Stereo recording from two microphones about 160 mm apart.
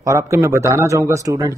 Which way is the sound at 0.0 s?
20° right (ahead or behind).